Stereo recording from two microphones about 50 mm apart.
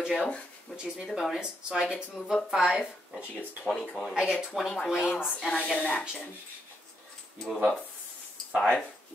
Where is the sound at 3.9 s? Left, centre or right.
Centre.